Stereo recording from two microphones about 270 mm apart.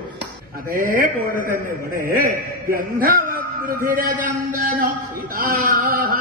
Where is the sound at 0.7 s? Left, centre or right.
Right.